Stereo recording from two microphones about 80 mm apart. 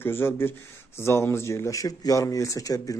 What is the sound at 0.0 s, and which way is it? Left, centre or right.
A man's voice, left.